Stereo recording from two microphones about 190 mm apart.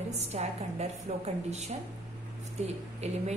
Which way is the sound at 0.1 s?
35° right (ahead or behind).